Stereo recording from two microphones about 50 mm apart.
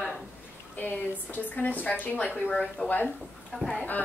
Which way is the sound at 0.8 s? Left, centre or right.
Left.